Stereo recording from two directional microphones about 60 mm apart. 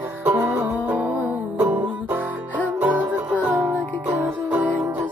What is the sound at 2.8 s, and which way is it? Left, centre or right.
Music, right.